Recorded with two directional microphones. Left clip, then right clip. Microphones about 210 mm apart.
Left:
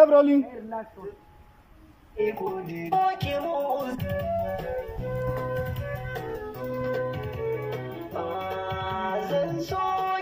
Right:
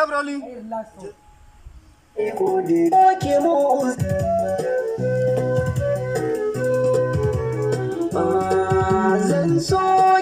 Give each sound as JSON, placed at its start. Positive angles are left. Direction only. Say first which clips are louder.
{"t": 0.0, "sound": "a man's voice", "louder": "left 5 dB", "side_deg": 30}
{"t": 2.1, "sound": "music", "louder": "right 7 dB", "side_deg": -35}